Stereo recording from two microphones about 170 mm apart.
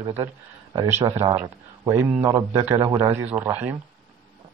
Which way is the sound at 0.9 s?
15° right (ahead or behind).